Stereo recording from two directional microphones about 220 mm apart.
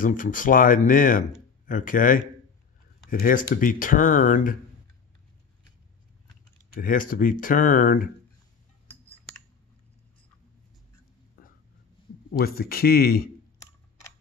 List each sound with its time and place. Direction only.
0.0 s speech: 35° left (ahead or behind)
6.7 s speech: 40° left (ahead or behind)
11.4 s a sound: 40° left (ahead or behind)
12.3 s speech: 45° left (ahead or behind)